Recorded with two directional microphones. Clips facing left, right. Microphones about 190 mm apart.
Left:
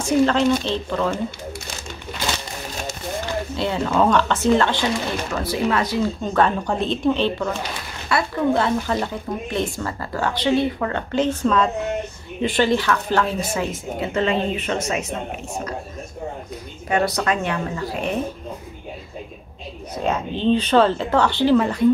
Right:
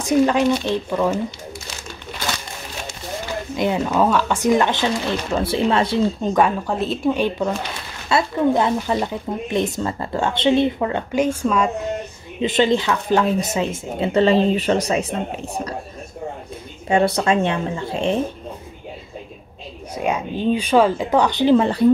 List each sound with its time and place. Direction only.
0.0 s speech: 15° right (ahead or behind)
3.5 s speech: 15° right (ahead or behind)
6.3 s speech: 5° right (ahead or behind); by 15.0 s 35° right (ahead or behind)
16.9 s speech: 30° right (ahead or behind)
20.0 s speech: 10° right (ahead or behind)